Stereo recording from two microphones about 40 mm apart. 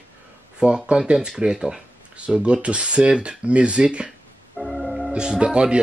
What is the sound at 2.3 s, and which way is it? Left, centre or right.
Speech, right.